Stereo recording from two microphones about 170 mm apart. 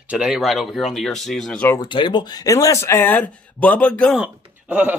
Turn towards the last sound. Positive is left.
turn(degrees=-10)  # may be behind; listen again after turning